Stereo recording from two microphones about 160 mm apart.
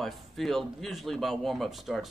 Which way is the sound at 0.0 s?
Centre (ahead or behind).